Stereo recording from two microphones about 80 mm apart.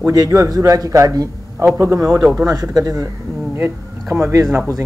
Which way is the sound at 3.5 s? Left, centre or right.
Right.